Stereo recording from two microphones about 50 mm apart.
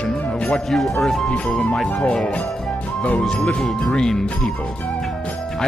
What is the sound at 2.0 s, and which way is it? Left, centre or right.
Speech, left.